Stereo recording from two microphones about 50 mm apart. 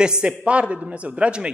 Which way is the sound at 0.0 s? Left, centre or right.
Centre.